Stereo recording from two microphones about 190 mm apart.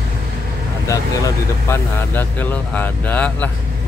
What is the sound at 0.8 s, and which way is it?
Speech, 15° left (ahead or behind).